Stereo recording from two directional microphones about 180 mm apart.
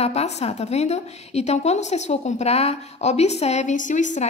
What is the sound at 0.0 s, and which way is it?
A woman's voice, 35° left (ahead or behind).